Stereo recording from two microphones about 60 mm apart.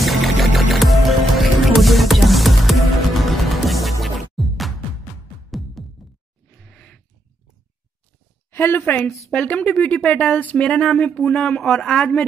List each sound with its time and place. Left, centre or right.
0.0 s music: centre
5.8 s music: centre
6.6 s a sound: centre
8.5 s a sound: left
8.8 s speech: left
9.3 s speech: centre
11.6 s a man's voice: centre